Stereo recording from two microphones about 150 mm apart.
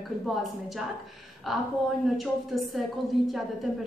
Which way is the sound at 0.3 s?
Centre (ahead or behind).